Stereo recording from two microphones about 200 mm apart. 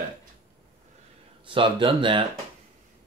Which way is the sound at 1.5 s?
25° right (ahead or behind).